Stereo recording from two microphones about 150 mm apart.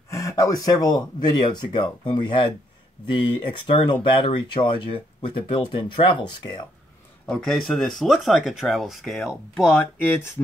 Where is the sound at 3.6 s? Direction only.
35° left (ahead or behind).